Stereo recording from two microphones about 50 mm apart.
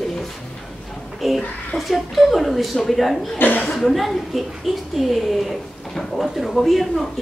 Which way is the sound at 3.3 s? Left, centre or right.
Left.